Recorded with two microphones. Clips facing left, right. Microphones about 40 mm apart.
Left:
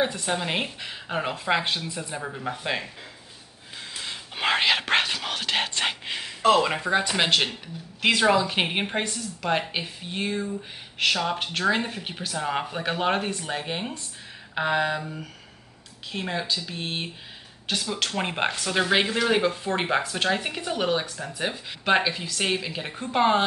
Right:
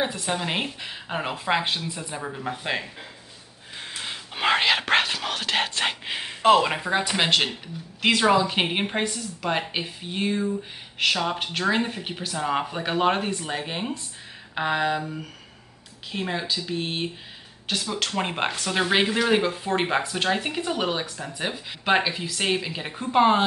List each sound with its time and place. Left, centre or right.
0.0 s speech: centre
3.7 s snort: right
4.1 s whispering: centre
6.5 s speech: centre
16.1 s speech: centre